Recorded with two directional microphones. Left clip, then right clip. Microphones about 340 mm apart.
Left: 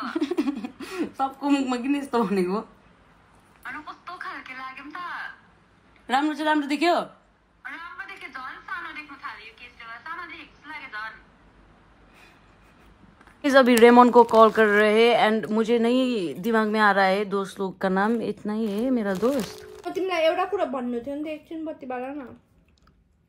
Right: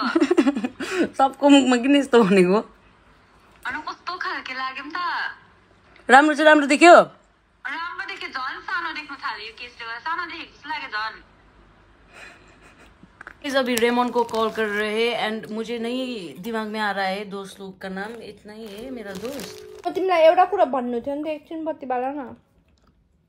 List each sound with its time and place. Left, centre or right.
0.0 s chuckle: right
3.6 s a sound: centre
6.0 s a man's voice: right
7.6 s a sound: centre
13.4 s speech: centre
20.0 s a man's voice: right
20.3 s speech: centre
21.5 s a man's voice: right